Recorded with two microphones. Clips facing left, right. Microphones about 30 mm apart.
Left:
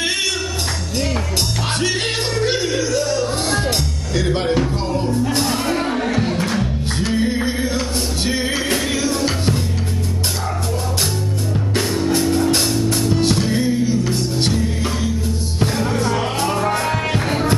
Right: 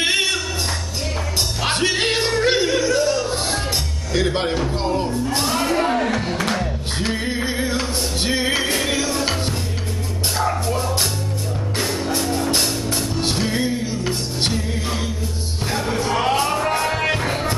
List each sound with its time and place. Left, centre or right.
0.0 s music: right
2.0 s music: centre
2.8 s music: right
4.1 s music: centre
7.1 s music: centre
13.2 s music: centre
16.1 s music: centre